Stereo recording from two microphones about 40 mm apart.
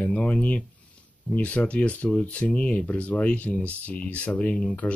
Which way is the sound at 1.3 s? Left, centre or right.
Left.